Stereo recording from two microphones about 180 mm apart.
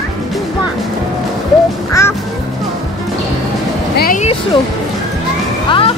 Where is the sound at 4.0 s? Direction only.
50° left (ahead or behind).